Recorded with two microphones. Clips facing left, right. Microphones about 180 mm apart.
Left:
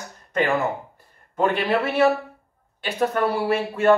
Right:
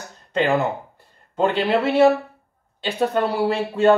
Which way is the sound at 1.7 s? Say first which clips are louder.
Right 5 dB; 20° right (ahead or behind).